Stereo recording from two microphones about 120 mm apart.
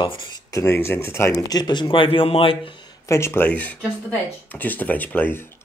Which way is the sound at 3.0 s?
20° left (ahead or behind).